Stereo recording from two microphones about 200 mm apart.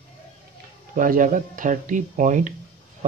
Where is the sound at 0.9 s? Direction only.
40° right (ahead or behind).